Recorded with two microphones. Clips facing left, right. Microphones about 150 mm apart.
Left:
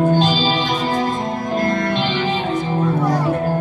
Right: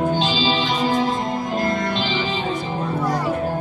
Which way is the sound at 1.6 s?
50° left (ahead or behind).